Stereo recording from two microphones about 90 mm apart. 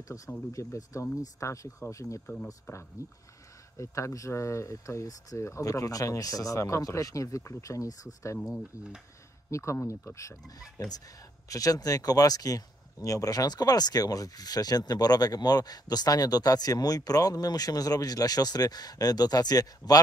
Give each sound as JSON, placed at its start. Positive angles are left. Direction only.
{"t": 0.5, "sound": "speech", "side_deg": 35}
{"t": 8.5, "sound": "speech", "side_deg": -5}
{"t": 9.5, "sound": "speech", "side_deg": 35}
{"t": 11.4, "sound": "speech", "side_deg": 40}